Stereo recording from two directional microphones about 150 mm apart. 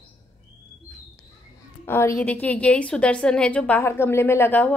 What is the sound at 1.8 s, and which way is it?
A woman's voice, 15° left (ahead or behind).